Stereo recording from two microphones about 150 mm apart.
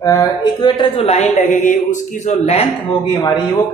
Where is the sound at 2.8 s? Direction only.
30° left (ahead or behind).